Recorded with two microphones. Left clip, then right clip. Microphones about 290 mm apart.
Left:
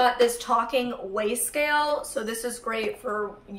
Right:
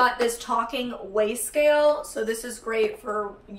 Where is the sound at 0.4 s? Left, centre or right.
Centre.